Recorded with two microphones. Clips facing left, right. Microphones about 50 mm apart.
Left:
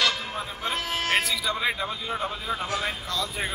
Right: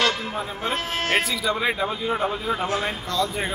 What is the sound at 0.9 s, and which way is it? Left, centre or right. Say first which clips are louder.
Speech: right 2 dB; right.